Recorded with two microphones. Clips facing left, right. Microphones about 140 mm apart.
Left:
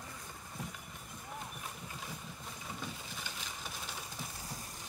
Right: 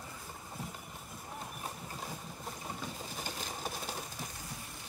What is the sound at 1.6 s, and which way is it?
Boat, 35° right (ahead or behind).